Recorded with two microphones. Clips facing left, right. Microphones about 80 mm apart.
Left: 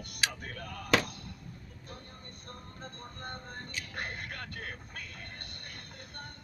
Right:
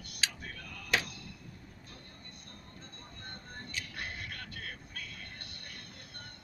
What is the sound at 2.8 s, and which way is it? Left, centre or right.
Music, left.